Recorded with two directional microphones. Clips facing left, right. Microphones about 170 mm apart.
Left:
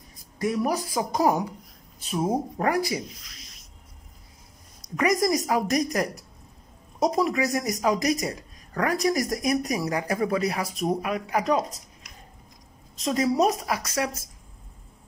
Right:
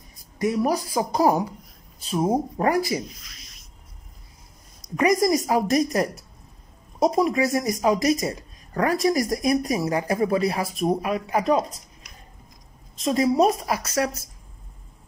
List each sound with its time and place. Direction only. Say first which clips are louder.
0.7 s speech: right 3 dB; 35° right (ahead or behind)
4.8 s speech: right 3 dB; 25° right (ahead or behind)
13.0 s speech: right 3 dB; 25° right (ahead or behind)